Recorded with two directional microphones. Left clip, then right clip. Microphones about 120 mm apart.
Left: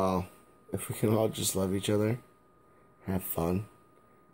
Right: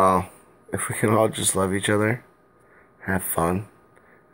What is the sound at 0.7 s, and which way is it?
Speech, 25° left (ahead or behind).